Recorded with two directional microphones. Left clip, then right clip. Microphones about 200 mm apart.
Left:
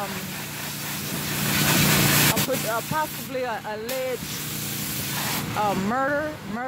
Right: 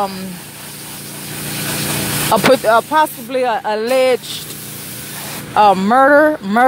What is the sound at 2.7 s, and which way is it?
Speech, 40° right (ahead or behind).